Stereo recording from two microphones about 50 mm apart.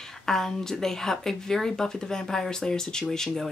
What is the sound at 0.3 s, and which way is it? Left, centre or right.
Speech, centre.